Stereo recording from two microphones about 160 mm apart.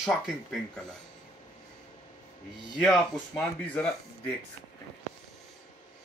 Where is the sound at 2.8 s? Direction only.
5° left (ahead or behind).